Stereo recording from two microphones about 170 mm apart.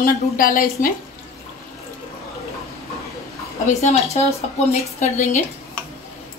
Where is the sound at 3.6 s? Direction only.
40° left (ahead or behind).